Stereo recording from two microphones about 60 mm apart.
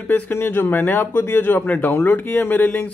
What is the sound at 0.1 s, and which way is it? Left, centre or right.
Speech, left.